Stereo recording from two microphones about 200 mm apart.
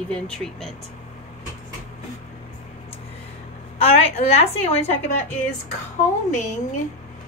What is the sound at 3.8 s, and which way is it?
A woman's voice, 30° left (ahead or behind).